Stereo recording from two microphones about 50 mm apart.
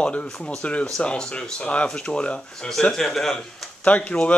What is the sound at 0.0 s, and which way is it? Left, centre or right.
Speech, left.